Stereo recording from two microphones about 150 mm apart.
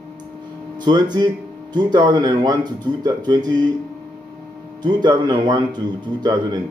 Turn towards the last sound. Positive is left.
turn(degrees=-30)  # may be behind; listen again after turning